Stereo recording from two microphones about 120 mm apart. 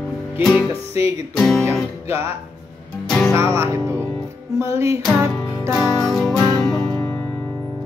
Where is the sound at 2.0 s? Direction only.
25° right (ahead or behind).